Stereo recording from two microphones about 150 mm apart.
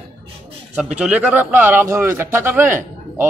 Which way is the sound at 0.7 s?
10° right (ahead or behind).